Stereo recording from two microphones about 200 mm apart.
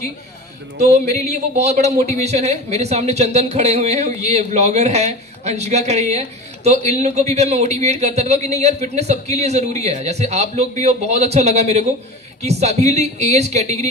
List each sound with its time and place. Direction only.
0.7 s speech: 35° right (ahead or behind)